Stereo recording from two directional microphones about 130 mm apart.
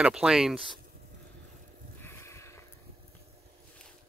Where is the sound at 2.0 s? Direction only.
20° left (ahead or behind).